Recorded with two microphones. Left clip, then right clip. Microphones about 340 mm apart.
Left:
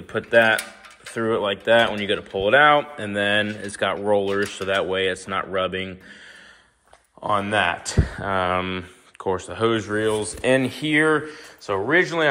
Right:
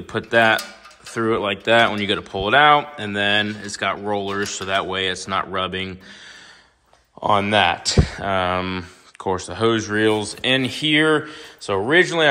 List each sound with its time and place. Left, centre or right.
0.0 s speech: centre
7.2 s speech: centre